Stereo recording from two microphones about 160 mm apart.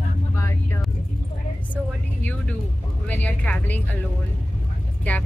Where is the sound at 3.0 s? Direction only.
10° left (ahead or behind).